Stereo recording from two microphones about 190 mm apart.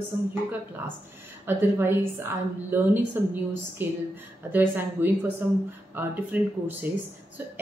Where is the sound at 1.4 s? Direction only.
10° right (ahead or behind).